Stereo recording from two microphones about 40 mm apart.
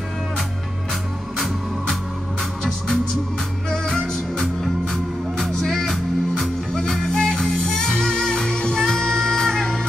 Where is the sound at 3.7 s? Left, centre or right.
Centre.